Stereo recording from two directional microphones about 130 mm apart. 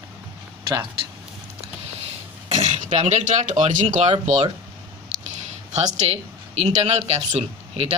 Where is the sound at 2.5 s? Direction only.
45° right (ahead or behind).